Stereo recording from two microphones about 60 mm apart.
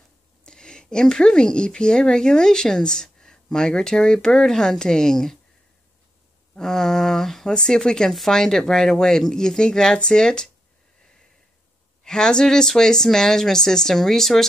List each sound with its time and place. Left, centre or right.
0.4 s a woman's voice: centre
6.5 s a woman's voice: centre
12.0 s a woman's voice: centre